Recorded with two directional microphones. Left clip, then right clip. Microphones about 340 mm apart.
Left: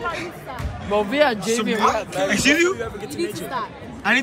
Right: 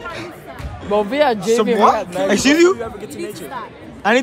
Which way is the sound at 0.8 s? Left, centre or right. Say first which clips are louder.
Right 3 dB; right.